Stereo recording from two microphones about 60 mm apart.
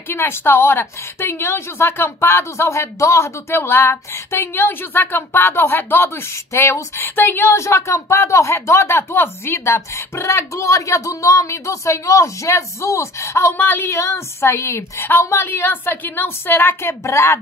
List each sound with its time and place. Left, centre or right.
0.1 s a woman's voice: left
6.5 s speech: left
13.6 s a woman's voice: left
13.8 s a woman's voice: left